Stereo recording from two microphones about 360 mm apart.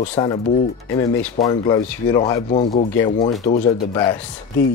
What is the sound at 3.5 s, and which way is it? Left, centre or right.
Speech, left.